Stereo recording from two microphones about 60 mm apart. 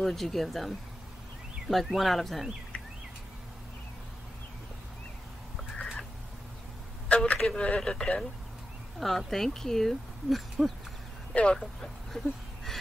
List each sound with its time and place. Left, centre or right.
0.0 s speech: centre
7.1 s a sound: centre
7.3 s speech: centre
7.6 s speech: centre
11.3 s speech: centre